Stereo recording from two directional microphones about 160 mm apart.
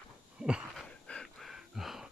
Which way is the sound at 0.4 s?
5° right (ahead or behind).